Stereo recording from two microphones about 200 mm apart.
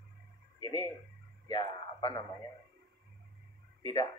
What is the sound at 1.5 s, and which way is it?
Speech, 25° left (ahead or behind).